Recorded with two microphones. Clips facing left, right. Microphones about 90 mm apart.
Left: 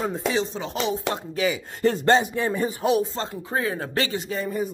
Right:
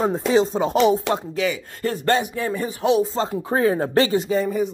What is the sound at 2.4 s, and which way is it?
Speech, 15° left (ahead or behind).